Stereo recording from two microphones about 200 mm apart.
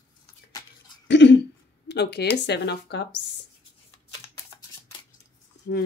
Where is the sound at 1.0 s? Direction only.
60° left (ahead or behind).